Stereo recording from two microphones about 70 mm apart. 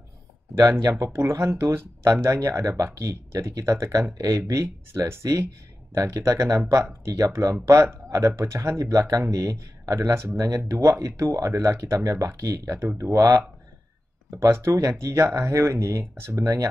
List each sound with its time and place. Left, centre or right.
0.7 s speech: right
14.3 s speech: right